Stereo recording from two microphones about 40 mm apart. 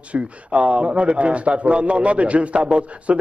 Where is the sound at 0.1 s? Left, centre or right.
Right.